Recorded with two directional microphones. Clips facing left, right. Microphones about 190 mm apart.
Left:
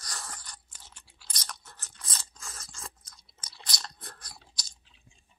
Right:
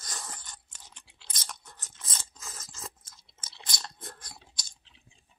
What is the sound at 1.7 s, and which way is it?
Scrape, 20° right (ahead or behind).